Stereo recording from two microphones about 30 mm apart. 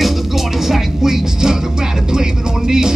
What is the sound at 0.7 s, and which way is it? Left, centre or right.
Speech, centre.